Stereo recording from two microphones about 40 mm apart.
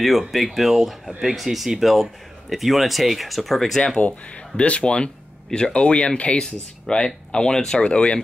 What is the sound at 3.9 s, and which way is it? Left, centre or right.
Speech, left.